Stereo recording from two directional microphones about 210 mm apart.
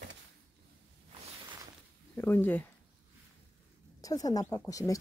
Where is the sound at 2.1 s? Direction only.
10° left (ahead or behind).